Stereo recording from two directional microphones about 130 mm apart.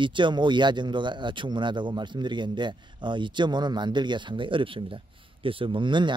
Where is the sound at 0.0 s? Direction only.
40° right (ahead or behind).